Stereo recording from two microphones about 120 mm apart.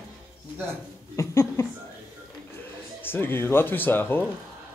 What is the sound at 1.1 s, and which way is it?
Speech, 25° left (ahead or behind).